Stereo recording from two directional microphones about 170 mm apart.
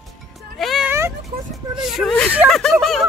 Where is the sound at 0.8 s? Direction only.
15° right (ahead or behind).